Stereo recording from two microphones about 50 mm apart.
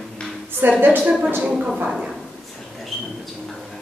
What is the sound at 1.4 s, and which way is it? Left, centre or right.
Speech, centre.